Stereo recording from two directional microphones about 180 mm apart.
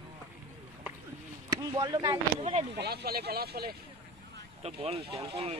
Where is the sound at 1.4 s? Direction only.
20° right (ahead or behind).